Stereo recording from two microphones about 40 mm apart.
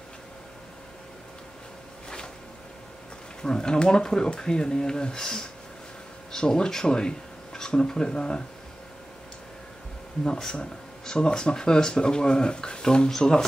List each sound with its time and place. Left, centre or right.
3.4 s speech: centre
10.2 s speech: centre